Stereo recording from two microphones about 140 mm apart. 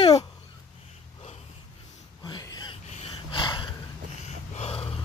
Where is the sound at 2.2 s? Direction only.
30° left (ahead or behind).